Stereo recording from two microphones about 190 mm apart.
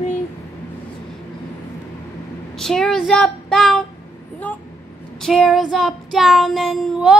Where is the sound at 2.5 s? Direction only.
5° left (ahead or behind).